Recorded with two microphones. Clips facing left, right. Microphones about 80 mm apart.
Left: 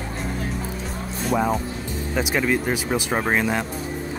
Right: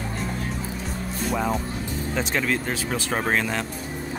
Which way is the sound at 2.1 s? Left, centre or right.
Centre.